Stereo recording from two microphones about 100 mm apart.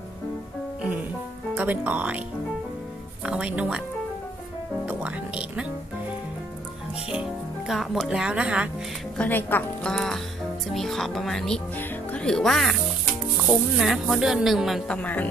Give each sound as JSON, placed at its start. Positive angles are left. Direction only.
{"t": 1.5, "sound": "speech", "side_deg": -15}
{"t": 3.3, "sound": "speech", "side_deg": -10}
{"t": 4.8, "sound": "speech", "side_deg": -15}
{"t": 7.1, "sound": "speech", "side_deg": -5}
{"t": 9.2, "sound": "speech", "side_deg": 20}
{"t": 9.8, "sound": "music", "side_deg": 5}
{"t": 10.7, "sound": "speech", "side_deg": 5}
{"t": 13.7, "sound": "speech", "side_deg": -5}
{"t": 15.0, "sound": "music", "side_deg": 15}